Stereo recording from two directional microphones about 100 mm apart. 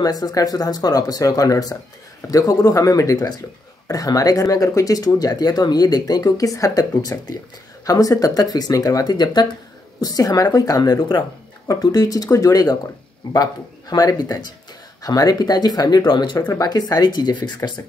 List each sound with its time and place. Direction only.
0.0 s speech: 40° left (ahead or behind)
11.6 s speech: 40° left (ahead or behind)